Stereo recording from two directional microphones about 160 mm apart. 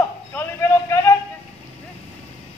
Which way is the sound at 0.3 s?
15° left (ahead or behind).